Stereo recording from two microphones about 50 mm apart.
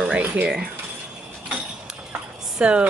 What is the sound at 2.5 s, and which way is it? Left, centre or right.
Speech, centre.